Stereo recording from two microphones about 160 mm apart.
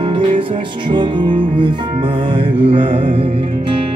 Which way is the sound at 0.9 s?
30° right (ahead or behind).